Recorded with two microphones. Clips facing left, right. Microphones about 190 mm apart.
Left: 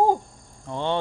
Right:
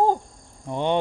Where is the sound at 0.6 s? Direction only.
15° right (ahead or behind).